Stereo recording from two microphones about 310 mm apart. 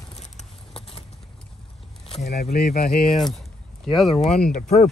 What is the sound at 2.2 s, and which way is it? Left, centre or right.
Speech, left.